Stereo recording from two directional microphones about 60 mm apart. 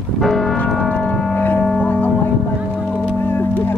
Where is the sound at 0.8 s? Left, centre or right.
Left.